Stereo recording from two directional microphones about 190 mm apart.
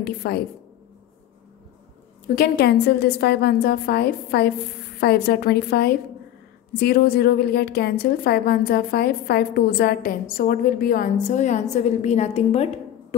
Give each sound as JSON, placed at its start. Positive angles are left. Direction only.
{"t": 0.0, "sound": "a woman's voice", "side_deg": 55}
{"t": 2.2, "sound": "a woman's voice", "side_deg": 50}